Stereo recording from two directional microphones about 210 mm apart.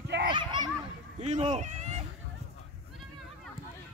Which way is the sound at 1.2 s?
35° right (ahead or behind).